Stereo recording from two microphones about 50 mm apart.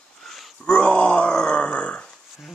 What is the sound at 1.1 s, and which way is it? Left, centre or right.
Grunt, centre.